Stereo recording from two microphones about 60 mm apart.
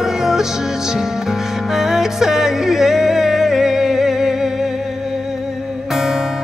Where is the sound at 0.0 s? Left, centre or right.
Centre.